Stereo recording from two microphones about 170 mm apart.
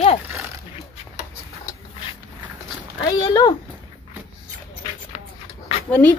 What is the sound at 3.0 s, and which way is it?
Speech, 20° left (ahead or behind).